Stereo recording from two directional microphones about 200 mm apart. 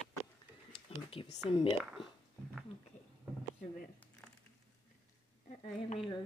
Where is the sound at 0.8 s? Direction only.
25° left (ahead or behind).